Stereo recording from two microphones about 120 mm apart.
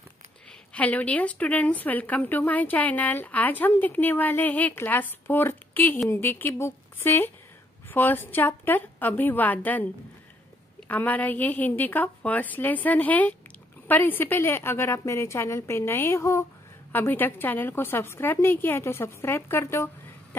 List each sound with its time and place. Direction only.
0.7 s a woman's voice: 10° left (ahead or behind)
10.9 s a woman's voice: 15° left (ahead or behind)